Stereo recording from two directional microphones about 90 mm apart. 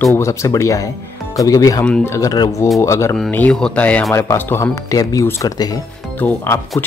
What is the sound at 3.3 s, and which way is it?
Speech, 20° left (ahead or behind).